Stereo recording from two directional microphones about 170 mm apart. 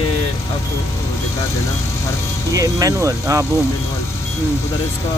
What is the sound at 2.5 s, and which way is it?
Speech, 20° right (ahead or behind).